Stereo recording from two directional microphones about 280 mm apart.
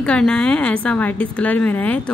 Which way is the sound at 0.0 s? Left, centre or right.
Centre.